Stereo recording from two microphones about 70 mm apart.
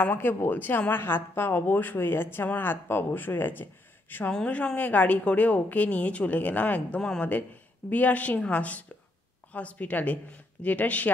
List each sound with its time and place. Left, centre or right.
0.0 s speech: left
4.3 s a woman's voice: centre
7.0 s speech: centre
7.9 s a woman's voice: left